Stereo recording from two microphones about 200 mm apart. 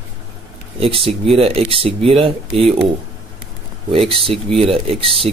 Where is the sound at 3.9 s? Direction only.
25° right (ahead or behind).